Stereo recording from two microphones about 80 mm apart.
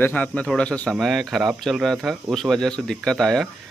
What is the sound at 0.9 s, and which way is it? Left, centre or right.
Speech, centre.